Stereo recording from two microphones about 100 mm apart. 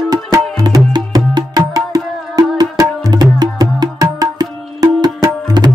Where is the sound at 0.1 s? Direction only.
40° right (ahead or behind).